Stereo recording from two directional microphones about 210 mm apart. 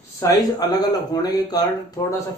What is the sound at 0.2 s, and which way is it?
Speech, 20° left (ahead or behind).